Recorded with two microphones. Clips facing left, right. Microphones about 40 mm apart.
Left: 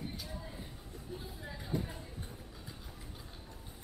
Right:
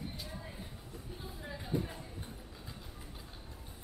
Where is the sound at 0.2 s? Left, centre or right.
Centre.